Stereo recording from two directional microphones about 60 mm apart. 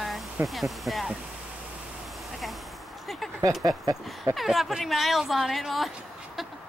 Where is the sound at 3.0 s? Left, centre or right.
Centre.